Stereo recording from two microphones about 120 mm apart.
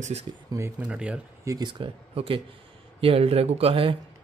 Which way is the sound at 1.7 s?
45° right (ahead or behind).